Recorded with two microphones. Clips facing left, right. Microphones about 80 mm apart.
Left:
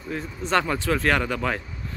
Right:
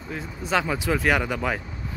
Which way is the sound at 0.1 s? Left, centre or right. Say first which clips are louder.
Left 2 dB; centre.